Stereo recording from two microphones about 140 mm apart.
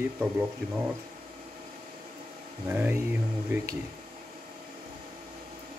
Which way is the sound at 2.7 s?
15° right (ahead or behind).